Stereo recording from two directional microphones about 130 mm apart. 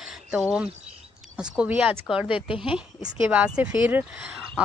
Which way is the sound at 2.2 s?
40° left (ahead or behind).